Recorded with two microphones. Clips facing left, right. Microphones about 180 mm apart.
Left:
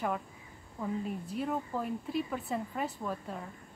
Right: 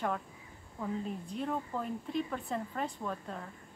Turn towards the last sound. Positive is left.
turn(degrees=5)  # may be behind; listen again after turning